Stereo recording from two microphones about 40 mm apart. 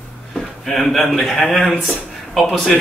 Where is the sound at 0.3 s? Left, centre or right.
Centre.